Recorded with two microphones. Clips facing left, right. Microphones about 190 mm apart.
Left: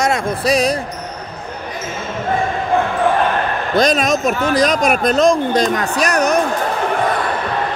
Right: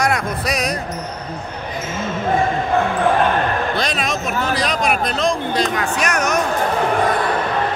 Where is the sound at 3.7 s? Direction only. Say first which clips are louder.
Left 7 dB; 45° left (ahead or behind).